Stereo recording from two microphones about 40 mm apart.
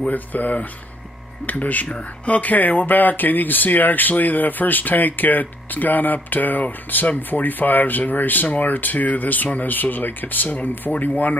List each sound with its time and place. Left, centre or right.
0.1 s speech: left